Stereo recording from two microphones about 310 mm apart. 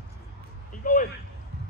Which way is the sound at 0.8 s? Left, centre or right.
Left.